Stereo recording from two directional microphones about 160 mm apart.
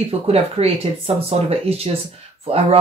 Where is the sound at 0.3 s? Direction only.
40° right (ahead or behind).